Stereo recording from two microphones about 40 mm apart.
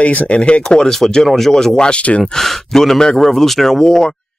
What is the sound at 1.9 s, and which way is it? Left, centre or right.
Speech, left.